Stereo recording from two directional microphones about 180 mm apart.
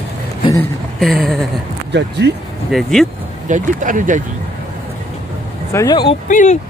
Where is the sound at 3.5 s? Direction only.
45° right (ahead or behind).